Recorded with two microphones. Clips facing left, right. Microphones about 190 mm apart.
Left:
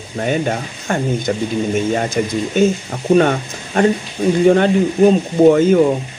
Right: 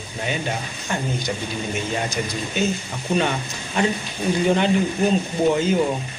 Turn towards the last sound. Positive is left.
turn(degrees=55)  # may be behind; listen again after turning